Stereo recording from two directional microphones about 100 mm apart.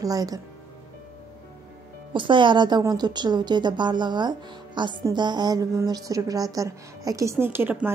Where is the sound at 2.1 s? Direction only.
55° right (ahead or behind).